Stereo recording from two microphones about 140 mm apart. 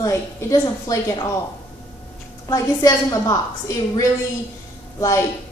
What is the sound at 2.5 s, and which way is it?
Speech, 25° left (ahead or behind).